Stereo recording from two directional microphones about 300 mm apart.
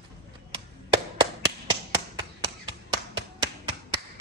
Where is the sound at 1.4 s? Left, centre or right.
Centre.